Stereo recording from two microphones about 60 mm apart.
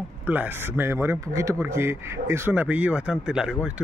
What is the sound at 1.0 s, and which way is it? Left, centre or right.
Speech, right.